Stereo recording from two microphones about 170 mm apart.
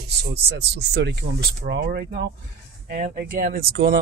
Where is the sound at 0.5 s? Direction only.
75° right (ahead or behind).